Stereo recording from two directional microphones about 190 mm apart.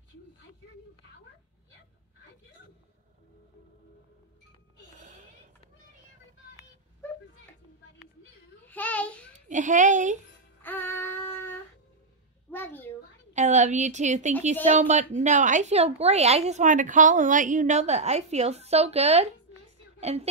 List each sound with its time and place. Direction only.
8.6 s child singing: 10° left (ahead or behind)
9.5 s a woman's voice: 40° right (ahead or behind)
10.6 s music: 10° left (ahead or behind)
12.4 s a sound: 10° left (ahead or behind)
13.3 s a woman's voice: 40° right (ahead or behind)